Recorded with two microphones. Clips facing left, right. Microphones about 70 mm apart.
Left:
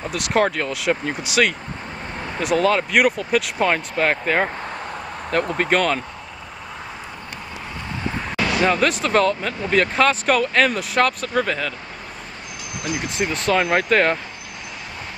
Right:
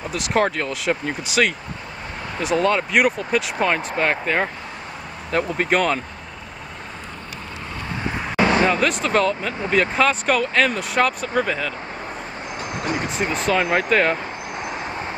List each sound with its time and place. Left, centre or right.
0.1 s speech: centre
2.5 s speech: centre
8.4 s a sound: right
8.6 s speech: centre
12.7 s speech: right
13.3 s speech: centre